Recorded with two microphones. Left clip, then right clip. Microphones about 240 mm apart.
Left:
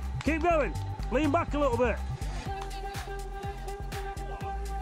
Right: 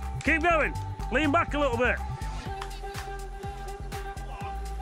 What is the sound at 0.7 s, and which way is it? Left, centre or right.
Music, right.